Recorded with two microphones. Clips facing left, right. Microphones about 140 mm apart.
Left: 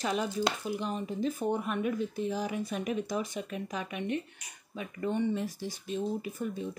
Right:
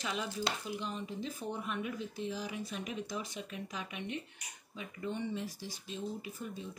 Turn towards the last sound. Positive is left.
turn(degrees=55)  # may be behind; listen again after turning